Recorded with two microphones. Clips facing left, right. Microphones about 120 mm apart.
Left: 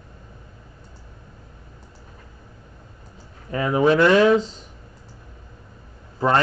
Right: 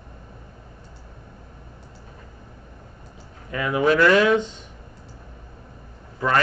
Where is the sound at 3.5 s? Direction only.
30° left (ahead or behind).